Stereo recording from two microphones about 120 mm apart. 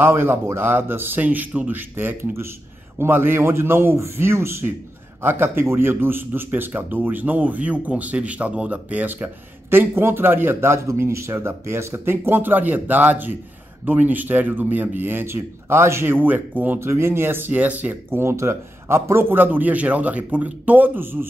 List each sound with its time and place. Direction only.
0.0 s a man's voice: 20° right (ahead or behind)